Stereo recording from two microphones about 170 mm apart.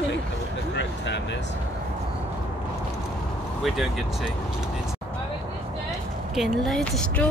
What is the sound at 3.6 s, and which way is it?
Speech, centre (ahead or behind).